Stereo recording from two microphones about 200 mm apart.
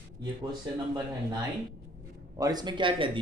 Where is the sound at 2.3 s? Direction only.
20° right (ahead or behind).